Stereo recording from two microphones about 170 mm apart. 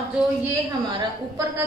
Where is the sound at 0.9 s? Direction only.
25° right (ahead or behind).